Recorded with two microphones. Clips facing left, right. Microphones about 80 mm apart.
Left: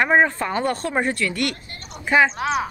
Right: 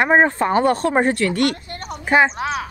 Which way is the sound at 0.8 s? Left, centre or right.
Right.